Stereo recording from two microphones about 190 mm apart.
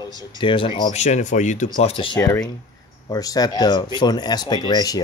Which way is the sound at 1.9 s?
25° left (ahead or behind).